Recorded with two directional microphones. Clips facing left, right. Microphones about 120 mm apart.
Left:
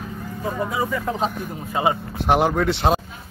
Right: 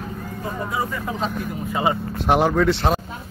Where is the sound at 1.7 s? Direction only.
20° left (ahead or behind).